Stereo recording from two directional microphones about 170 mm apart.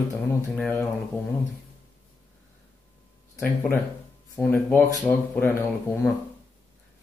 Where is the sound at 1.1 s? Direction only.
15° left (ahead or behind).